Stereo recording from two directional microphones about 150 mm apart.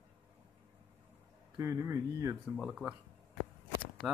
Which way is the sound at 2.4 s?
Centre (ahead or behind).